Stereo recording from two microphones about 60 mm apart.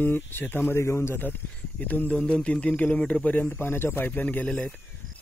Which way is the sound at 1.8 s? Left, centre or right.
Left.